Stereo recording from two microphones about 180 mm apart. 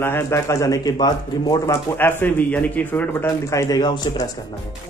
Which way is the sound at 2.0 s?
10° left (ahead or behind).